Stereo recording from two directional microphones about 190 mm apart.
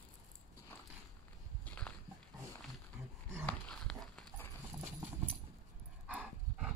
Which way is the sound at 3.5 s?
5° left (ahead or behind).